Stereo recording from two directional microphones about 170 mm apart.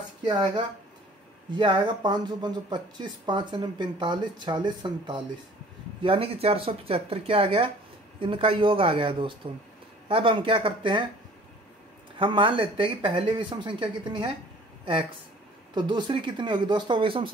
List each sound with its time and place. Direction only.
0.2 s speech: 25° right (ahead or behind)
12.2 s speech: 30° right (ahead or behind)